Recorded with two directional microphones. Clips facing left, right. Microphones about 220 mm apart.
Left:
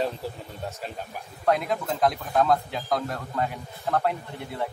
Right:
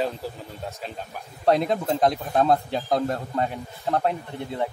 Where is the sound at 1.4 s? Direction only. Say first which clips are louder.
Right 4 dB; 30° right (ahead or behind).